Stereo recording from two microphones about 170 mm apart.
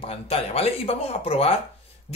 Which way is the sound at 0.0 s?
35° left (ahead or behind).